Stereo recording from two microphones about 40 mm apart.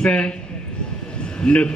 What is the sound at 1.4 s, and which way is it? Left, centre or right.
Speech, left.